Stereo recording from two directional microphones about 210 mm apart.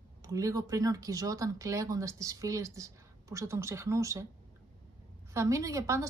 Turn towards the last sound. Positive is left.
turn(degrees=-15)  # may be behind; listen again after turning